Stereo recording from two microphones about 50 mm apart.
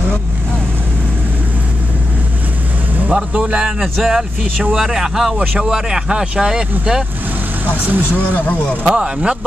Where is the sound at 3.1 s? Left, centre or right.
Right.